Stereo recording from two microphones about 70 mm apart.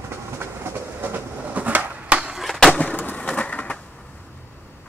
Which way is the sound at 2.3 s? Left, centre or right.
Centre.